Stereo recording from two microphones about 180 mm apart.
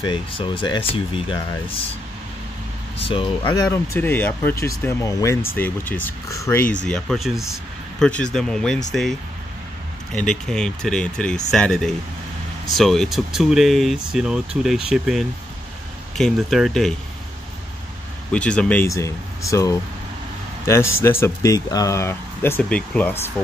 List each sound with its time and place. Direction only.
0.0 s speech: 25° left (ahead or behind)
3.0 s speech: 30° left (ahead or behind)
3.7 s speech: 15° left (ahead or behind)
6.8 s speech: 5° left (ahead or behind)
10.1 s speech: 5° left (ahead or behind)
18.3 s speech: 5° left (ahead or behind)